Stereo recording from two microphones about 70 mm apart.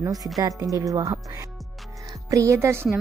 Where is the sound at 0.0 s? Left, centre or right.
Right.